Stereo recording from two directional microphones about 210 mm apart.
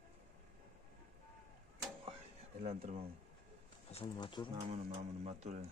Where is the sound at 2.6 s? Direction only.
30° right (ahead or behind).